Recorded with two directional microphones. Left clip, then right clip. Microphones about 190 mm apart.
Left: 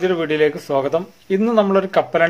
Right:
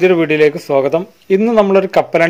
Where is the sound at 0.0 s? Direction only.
35° right (ahead or behind).